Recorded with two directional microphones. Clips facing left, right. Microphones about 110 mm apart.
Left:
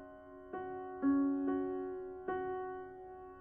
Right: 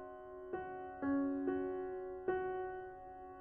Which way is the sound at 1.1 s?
15° left (ahead or behind).